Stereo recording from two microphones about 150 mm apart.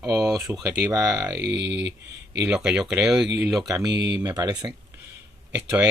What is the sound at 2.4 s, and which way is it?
Speech, 5° right (ahead or behind).